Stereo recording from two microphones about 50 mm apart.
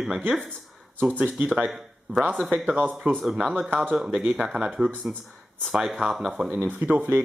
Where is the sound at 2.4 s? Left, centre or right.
Right.